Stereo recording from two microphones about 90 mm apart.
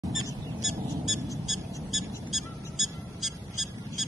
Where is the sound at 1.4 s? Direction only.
Centre (ahead or behind).